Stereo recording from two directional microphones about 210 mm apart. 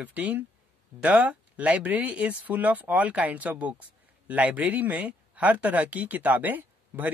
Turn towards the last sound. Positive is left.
turn(degrees=-10)  # may be behind; listen again after turning